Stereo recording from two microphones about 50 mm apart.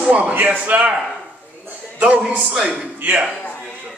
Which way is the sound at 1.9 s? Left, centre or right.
Right.